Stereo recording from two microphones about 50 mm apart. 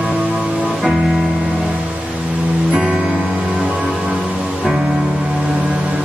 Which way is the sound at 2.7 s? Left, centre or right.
Centre.